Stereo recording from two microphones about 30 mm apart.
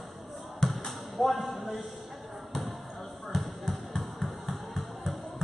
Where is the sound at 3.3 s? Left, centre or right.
Centre.